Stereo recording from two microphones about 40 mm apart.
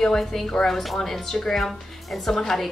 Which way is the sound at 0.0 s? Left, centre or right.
Centre.